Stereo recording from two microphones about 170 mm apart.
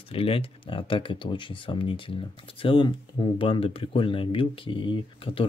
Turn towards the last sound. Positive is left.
turn(degrees=30)  # may be behind; listen again after turning